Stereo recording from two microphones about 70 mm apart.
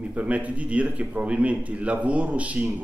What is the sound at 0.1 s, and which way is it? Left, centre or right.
A man's voice, centre.